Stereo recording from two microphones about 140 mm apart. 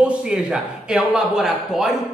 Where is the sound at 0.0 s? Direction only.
5° right (ahead or behind).